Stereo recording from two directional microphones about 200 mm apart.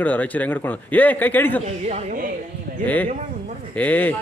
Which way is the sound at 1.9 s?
35° right (ahead or behind).